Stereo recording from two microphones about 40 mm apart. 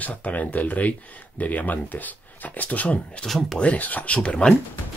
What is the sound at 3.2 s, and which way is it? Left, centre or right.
Speech, centre.